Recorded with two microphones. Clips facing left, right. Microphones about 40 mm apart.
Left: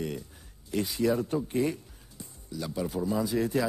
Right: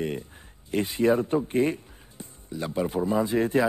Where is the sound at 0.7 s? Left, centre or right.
Right.